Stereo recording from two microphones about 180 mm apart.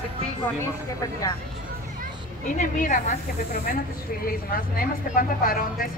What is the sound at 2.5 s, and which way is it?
Speech, 45° left (ahead or behind).